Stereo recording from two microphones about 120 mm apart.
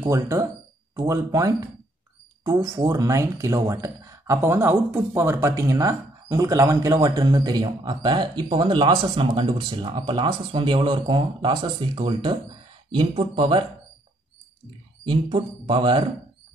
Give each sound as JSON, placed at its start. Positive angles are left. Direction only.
{"t": 0.0, "sound": "speech", "side_deg": -25}
{"t": 15.2, "sound": "speech", "side_deg": -60}